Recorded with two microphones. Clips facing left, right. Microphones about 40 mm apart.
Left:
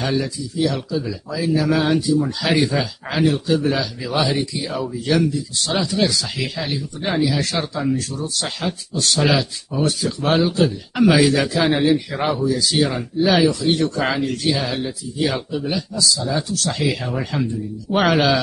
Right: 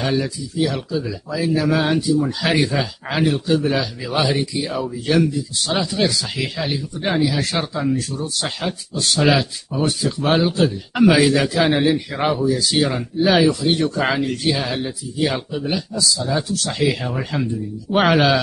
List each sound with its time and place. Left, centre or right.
0.0 s speech: centre
7.3 s speech: centre